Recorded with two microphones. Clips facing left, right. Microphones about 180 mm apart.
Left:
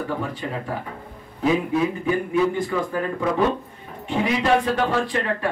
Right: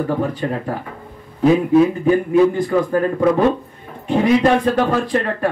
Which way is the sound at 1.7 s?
45° right (ahead or behind).